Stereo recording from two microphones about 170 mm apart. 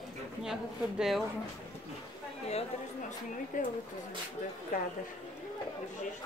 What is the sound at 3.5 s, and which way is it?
Speech, 50° left (ahead or behind).